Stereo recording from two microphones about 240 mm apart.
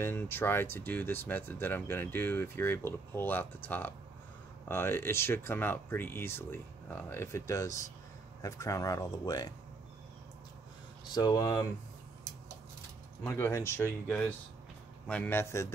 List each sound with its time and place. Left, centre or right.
0.0 s speech: centre
11.1 s speech: centre
13.2 s speech: centre